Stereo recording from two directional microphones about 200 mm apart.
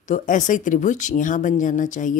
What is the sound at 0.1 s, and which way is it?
Speech, 40° left (ahead or behind).